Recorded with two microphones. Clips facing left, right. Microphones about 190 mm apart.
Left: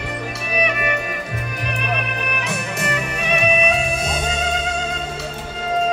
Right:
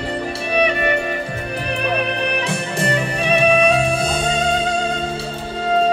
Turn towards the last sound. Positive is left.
turn(degrees=-30)  # may be behind; listen again after turning